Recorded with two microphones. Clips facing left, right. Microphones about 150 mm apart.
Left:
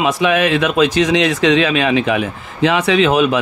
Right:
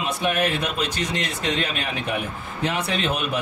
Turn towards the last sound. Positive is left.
turn(degrees=90)